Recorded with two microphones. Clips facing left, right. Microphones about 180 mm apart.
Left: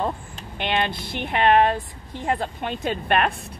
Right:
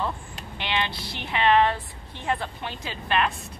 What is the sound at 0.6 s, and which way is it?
A woman's voice, 50° left (ahead or behind).